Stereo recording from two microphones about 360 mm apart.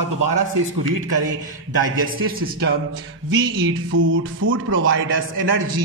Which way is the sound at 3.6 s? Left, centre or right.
Right.